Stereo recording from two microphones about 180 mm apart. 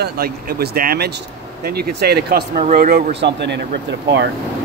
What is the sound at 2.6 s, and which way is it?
Speech, 50° right (ahead or behind).